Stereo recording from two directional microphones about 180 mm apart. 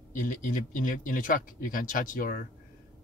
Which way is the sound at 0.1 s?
45° left (ahead or behind).